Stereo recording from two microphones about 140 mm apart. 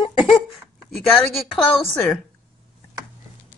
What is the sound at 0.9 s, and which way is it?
Speech, centre (ahead or behind).